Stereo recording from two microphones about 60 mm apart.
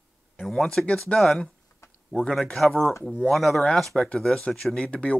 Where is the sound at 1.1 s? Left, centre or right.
Centre.